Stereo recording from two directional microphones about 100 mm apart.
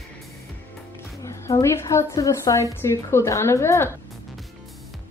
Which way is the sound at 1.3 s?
30° left (ahead or behind).